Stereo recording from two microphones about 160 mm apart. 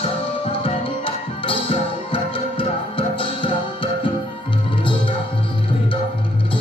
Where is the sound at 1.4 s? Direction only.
35° left (ahead or behind).